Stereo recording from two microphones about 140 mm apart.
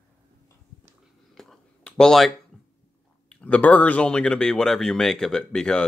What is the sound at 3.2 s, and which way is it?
Speech, 10° left (ahead or behind).